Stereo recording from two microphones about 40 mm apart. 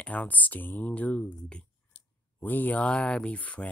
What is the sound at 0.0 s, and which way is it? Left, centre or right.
Speech, left.